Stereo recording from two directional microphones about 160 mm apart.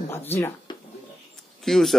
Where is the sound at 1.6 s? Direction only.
Centre (ahead or behind).